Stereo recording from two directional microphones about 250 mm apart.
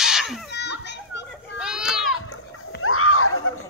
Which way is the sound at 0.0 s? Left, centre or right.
Centre.